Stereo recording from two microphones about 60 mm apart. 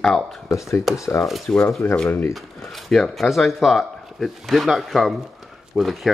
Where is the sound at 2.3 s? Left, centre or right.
Centre.